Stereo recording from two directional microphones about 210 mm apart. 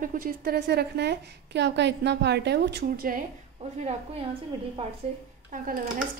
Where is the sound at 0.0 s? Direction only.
40° right (ahead or behind).